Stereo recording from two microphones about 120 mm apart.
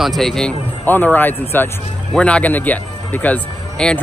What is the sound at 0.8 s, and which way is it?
Speech, 15° left (ahead or behind).